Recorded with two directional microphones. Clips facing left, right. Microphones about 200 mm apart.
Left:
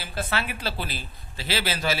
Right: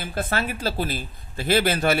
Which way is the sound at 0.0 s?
50° right (ahead or behind).